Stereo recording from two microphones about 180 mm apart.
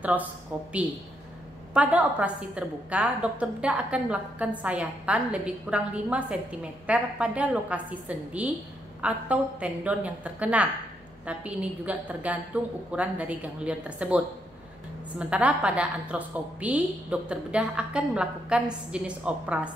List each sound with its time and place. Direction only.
0.0 s a woman's voice: 10° right (ahead or behind)
1.7 s a woman's voice: 5° right (ahead or behind)